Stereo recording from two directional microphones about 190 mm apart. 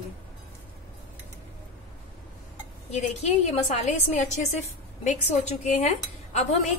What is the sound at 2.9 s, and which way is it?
A woman's voice, 35° left (ahead or behind).